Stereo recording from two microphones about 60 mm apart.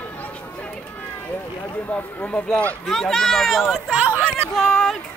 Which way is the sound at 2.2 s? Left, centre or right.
Centre.